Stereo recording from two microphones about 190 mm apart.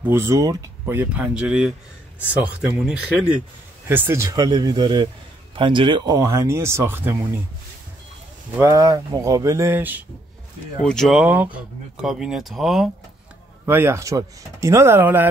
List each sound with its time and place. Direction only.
0.0 s speech: 15° right (ahead or behind)
8.5 s speech: 15° right (ahead or behind)
10.9 s speech: centre (ahead or behind)